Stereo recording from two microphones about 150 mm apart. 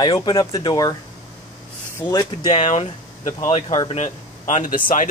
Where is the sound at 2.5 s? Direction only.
50° left (ahead or behind).